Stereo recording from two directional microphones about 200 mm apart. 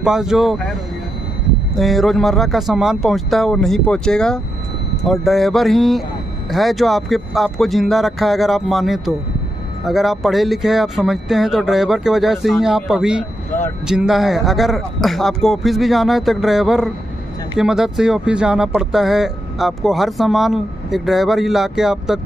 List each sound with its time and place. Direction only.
0.0 s speech: centre (ahead or behind)
1.8 s speech: centre (ahead or behind)